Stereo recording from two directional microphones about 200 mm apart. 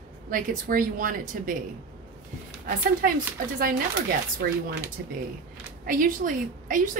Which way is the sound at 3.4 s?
45° right (ahead or behind).